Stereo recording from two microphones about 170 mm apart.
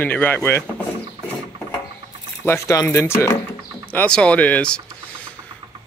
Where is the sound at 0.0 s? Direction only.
10° left (ahead or behind).